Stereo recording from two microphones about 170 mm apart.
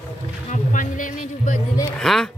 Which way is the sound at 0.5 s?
50° left (ahead or behind).